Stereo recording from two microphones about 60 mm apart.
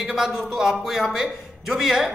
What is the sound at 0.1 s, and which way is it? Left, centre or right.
A man's voice, centre.